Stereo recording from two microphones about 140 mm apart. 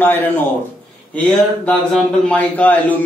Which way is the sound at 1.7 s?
5° left (ahead or behind).